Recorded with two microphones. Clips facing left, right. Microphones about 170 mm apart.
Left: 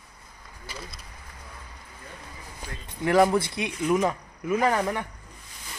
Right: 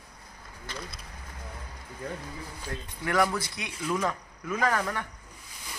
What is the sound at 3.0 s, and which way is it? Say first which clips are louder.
Speech: left 6 dB; 25° left (ahead or behind).